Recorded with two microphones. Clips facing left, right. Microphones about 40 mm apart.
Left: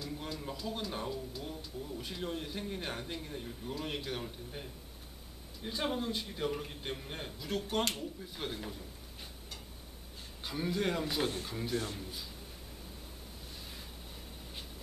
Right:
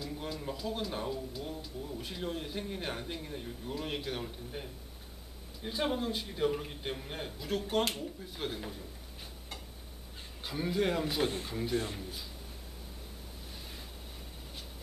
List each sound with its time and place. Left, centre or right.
0.0 s speech: centre
10.4 s speech: centre
11.7 s a man's voice: centre